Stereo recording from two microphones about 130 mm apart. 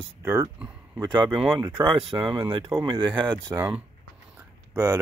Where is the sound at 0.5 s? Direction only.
10° right (ahead or behind).